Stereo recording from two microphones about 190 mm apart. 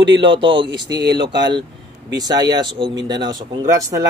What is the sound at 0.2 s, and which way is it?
Speech, 25° right (ahead or behind).